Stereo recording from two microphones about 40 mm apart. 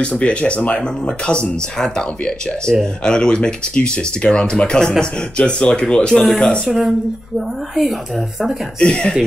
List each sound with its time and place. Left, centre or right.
0.0 s speech: left
6.7 s speech: centre
8.7 s speech: left